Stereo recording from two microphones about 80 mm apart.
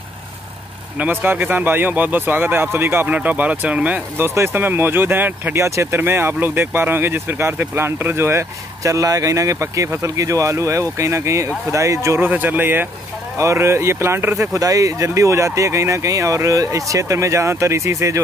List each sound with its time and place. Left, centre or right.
0.9 s speech: right
12.3 s speech: right
13.4 s speech: right